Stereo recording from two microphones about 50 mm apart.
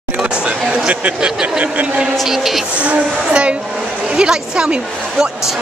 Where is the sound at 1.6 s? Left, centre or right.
Right.